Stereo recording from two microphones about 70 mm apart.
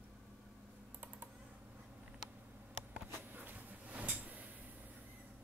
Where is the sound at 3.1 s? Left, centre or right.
Right.